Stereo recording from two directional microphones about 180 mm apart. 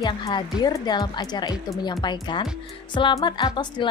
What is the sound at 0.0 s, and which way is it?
A woman's voice, 20° left (ahead or behind).